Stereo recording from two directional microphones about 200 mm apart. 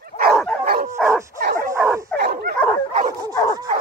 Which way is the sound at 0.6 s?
45° right (ahead or behind).